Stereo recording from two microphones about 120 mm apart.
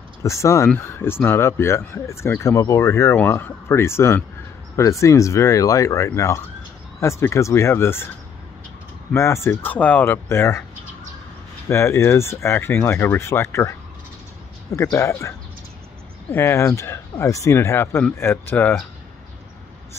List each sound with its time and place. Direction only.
0.2 s speech: 25° left (ahead or behind)
9.1 s speech: 25° left (ahead or behind)
11.7 s speech: 20° left (ahead or behind)